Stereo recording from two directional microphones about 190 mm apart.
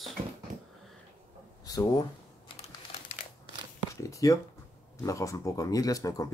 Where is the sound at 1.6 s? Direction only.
20° left (ahead or behind).